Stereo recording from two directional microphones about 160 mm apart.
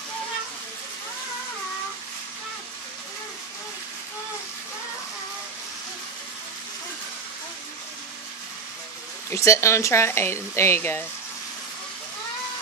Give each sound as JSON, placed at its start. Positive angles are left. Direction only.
{"t": 9.3, "sound": "speech", "side_deg": 20}